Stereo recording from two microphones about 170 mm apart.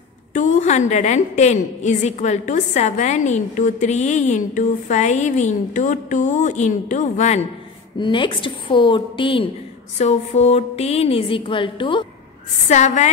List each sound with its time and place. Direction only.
0.3 s a woman's voice: 50° left (ahead or behind)
8.0 s a woman's voice: 30° left (ahead or behind)
9.9 s speech: 40° left (ahead or behind)
12.6 s a woman's voice: 45° left (ahead or behind)